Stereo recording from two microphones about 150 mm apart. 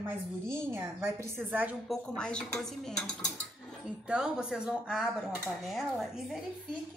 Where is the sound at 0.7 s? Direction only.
15° right (ahead or behind).